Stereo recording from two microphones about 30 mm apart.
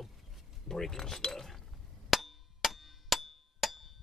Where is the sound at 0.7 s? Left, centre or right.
Centre.